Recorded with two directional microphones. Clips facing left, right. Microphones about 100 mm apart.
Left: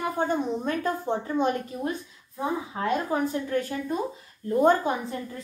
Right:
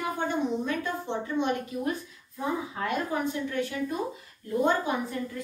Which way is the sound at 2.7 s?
35° left (ahead or behind).